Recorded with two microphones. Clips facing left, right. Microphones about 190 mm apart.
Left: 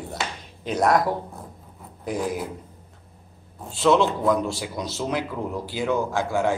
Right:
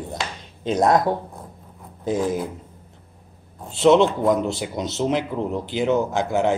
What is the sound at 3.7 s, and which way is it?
A man's voice, 25° right (ahead or behind).